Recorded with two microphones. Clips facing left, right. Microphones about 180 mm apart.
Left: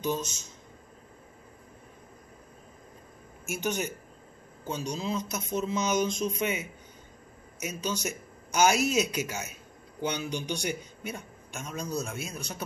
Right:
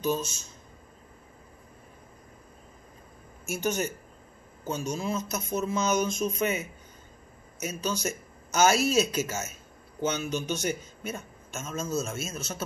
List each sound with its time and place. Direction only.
0.0 s speech: 20° left (ahead or behind)
3.4 s speech: 20° left (ahead or behind)
7.5 s speech: 15° left (ahead or behind)